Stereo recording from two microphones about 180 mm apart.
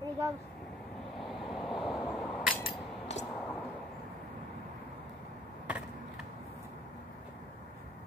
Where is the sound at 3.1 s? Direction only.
40° left (ahead or behind).